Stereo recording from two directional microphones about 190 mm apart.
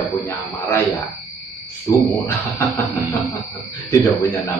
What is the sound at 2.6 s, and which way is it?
Speech, 10° left (ahead or behind).